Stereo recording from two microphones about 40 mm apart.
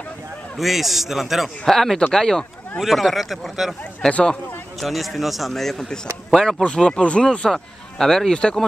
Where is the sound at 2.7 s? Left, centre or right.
Centre.